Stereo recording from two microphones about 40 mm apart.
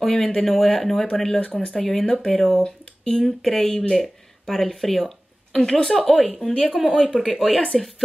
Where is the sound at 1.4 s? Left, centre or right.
Left.